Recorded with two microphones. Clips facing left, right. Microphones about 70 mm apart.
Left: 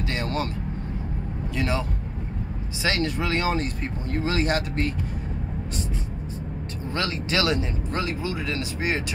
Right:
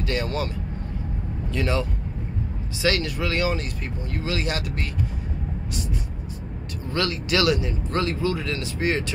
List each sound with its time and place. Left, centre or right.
0.0 s speech: left
1.5 s speech: left
6.9 s speech: left
7.9 s speech: centre